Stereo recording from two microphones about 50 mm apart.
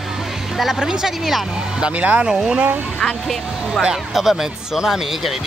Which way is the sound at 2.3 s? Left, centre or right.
Centre.